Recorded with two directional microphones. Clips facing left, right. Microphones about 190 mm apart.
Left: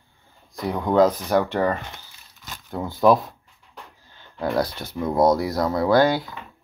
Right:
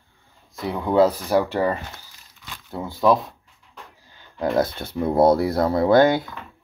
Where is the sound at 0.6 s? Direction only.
5° right (ahead or behind).